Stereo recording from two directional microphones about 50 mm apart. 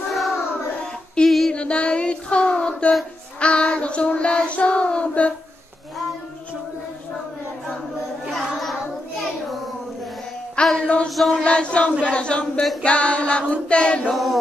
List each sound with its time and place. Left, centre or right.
1.2 s female singing: centre
1.5 s a sound: left
3.3 s child singing: left
8.3 s child singing: centre
10.5 s a sound: centre
11.1 s chant: centre
11.4 s child singing: left
14.1 s chant: centre